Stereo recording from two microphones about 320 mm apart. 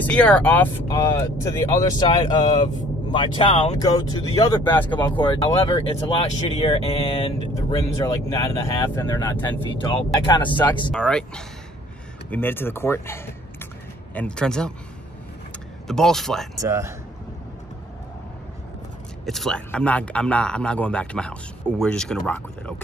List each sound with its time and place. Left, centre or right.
0.0 s speech: centre
5.7 s speech: centre
10.9 s a man's voice: centre
15.9 s a man's voice: centre
19.2 s a man's voice: centre